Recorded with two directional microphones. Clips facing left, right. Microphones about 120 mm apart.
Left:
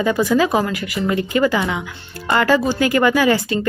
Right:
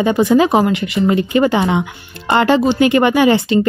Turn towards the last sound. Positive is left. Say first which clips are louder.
# right 4 dB
turn(degrees=-25)  # may be behind; listen again after turning